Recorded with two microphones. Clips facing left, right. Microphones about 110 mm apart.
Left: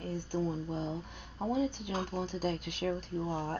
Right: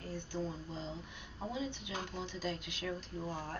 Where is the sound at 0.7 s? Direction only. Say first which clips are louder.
Left 7 dB; 55° left (ahead or behind).